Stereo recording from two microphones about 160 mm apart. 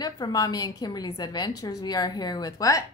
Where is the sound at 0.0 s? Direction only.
25° left (ahead or behind).